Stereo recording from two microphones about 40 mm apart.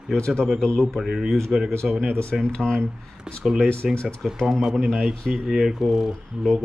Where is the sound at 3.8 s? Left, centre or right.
Centre.